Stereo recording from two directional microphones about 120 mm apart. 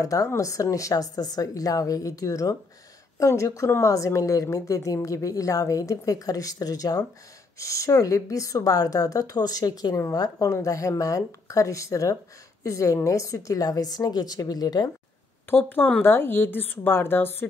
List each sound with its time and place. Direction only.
0.0 s a woman's voice: 25° left (ahead or behind)
15.5 s speech: 15° left (ahead or behind)